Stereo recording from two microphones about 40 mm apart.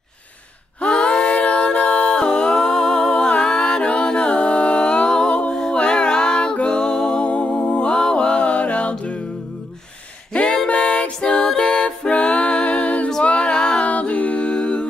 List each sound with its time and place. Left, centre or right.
0.7 s a sound: left
1.4 s music: left
2.1 s humming: left
3.2 s music: left
3.9 s a capella: left
5.5 s music: left
10.3 s music: left
13.2 s a capella: left